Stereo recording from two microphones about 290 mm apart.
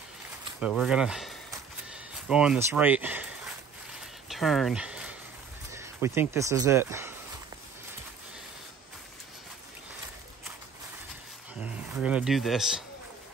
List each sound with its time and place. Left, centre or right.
0.6 s speech: centre
4.3 s a sound: centre
5.7 s speech: centre
11.6 s speech: centre